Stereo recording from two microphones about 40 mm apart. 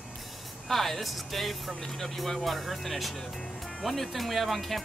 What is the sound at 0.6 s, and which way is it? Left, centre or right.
Speech, centre.